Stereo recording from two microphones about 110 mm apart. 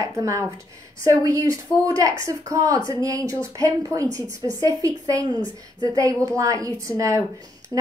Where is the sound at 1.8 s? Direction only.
30° right (ahead or behind).